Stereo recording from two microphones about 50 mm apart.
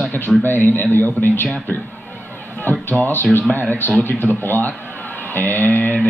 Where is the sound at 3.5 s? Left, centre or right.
Left.